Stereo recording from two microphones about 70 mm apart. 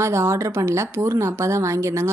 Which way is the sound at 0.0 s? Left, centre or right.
Right.